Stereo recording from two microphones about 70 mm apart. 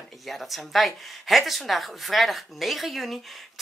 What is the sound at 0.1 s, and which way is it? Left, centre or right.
Speech, centre.